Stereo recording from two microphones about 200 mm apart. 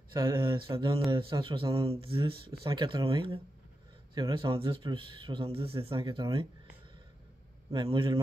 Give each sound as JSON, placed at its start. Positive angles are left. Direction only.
{"t": 0.1, "sound": "speech", "side_deg": -25}
{"t": 7.7, "sound": "speech", "side_deg": -20}